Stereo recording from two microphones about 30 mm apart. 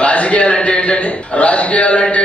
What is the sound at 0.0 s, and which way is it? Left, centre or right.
A man's voice, left.